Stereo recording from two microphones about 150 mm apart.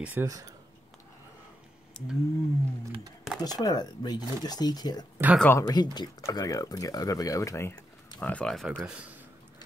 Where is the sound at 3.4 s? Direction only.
25° left (ahead or behind).